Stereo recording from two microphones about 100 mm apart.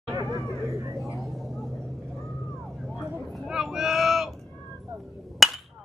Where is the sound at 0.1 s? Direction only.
35° right (ahead or behind).